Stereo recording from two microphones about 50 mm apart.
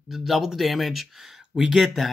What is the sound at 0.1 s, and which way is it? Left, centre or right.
Speech, centre.